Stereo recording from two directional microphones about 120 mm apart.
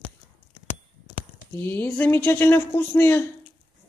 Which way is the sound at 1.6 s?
15° left (ahead or behind).